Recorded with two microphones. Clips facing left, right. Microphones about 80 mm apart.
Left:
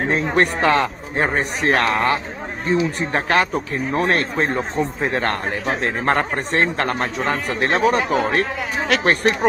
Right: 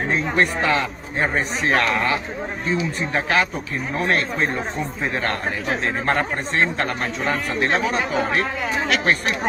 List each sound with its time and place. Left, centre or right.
0.1 s speech: left
2.6 s speech: left
3.1 s speech: left